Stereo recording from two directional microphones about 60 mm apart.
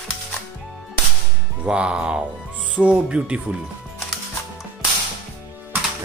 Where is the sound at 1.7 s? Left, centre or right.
Centre.